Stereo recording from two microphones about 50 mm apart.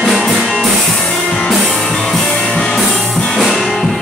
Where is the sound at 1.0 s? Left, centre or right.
Centre.